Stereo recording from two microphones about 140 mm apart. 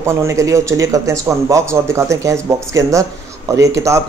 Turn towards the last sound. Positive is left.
turn(degrees=-20)  # may be behind; listen again after turning